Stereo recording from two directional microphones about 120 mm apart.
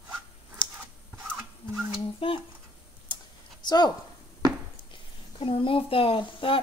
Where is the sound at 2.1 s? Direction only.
45° left (ahead or behind).